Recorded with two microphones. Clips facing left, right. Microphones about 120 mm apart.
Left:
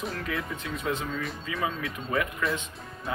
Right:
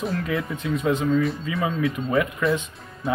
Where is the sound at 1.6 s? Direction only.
25° right (ahead or behind).